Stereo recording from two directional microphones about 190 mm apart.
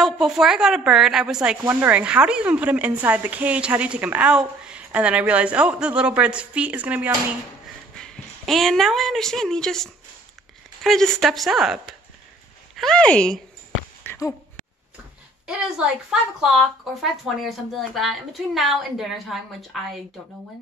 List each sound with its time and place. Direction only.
0.0 s a woman's voice: centre (ahead or behind)
7.9 s speech: 5° left (ahead or behind)
14.0 s a sound: 15° left (ahead or behind)
15.4 s speech: 5° right (ahead or behind)